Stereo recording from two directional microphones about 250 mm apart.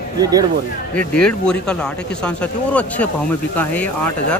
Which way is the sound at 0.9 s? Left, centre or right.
Centre.